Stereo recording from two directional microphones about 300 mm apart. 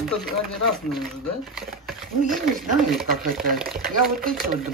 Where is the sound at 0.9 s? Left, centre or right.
Centre.